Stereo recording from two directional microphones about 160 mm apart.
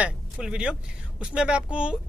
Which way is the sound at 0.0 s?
5° right (ahead or behind).